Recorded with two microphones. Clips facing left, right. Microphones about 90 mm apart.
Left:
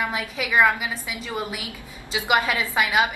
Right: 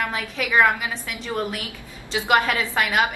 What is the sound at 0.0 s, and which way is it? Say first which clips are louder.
A woman's voice: even; 10° left (ahead or behind).